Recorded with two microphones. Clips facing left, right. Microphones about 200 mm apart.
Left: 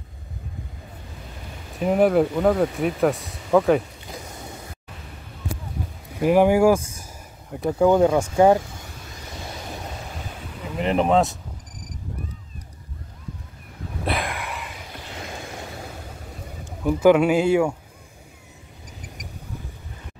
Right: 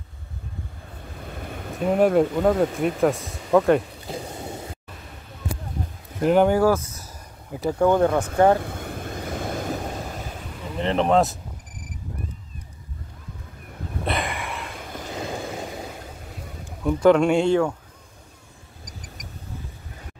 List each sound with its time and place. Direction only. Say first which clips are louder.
1.9 s speech: even; 5° left (ahead or behind)
4.1 s a sound: right 5 dB; 30° right (ahead or behind)
6.1 s a man's voice: left 1 dB; 5° left (ahead or behind)
8.5 s vehicle: right 2 dB; 55° right (ahead or behind)
10.8 s speech: even; 10° left (ahead or behind)
14.0 s a sound: left 1 dB; centre (ahead or behind)
16.8 s a man's voice: left 1 dB; 5° left (ahead or behind)